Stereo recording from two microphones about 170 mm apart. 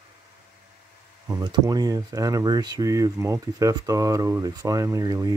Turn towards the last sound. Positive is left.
turn(degrees=-20)  # may be behind; listen again after turning